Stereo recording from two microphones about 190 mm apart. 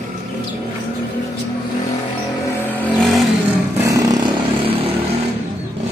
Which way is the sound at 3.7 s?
15° right (ahead or behind).